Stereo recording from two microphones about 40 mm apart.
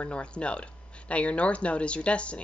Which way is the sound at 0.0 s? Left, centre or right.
Left.